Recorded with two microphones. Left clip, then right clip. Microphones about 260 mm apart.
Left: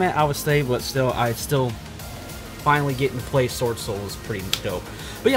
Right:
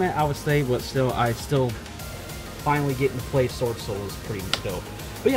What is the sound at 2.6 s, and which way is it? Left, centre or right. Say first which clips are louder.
Speech: left 3 dB; centre.